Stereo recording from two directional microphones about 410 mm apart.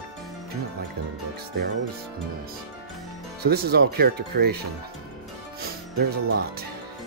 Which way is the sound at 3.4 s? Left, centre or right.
Right.